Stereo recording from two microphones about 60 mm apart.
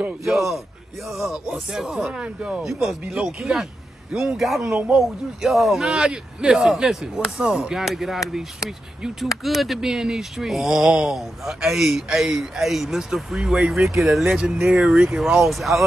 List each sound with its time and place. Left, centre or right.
0.2 s speech: centre
2.6 s speech: centre
4.4 s speech: centre
14.4 s speech: centre